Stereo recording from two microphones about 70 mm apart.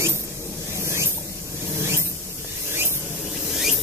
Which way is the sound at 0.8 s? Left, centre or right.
Right.